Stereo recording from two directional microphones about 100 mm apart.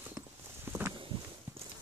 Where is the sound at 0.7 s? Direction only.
25° right (ahead or behind).